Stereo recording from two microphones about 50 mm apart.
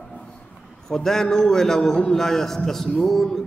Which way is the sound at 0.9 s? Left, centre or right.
Centre.